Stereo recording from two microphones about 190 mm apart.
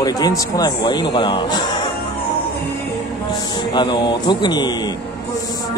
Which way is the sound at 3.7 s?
25° left (ahead or behind).